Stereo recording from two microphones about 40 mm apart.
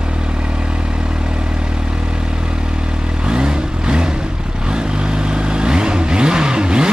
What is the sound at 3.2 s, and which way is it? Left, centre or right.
Vehicle, right.